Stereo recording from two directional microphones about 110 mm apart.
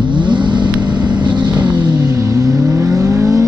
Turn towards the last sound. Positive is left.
turn(degrees=-30)  # may be behind; listen again after turning